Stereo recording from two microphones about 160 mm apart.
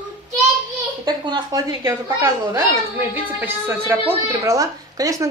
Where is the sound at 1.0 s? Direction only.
25° right (ahead or behind).